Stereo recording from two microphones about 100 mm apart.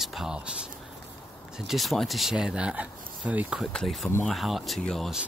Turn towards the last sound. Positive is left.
turn(degrees=0)  # may be behind; listen again after turning